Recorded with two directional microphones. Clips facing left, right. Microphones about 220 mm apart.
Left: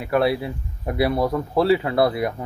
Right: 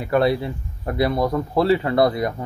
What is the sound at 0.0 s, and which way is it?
Speech, 5° left (ahead or behind).